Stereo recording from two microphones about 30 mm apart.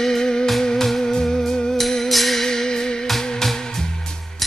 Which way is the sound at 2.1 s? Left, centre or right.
Centre.